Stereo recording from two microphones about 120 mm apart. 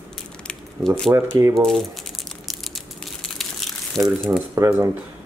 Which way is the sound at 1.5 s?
5° left (ahead or behind).